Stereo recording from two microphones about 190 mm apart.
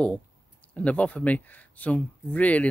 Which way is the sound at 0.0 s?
5° left (ahead or behind).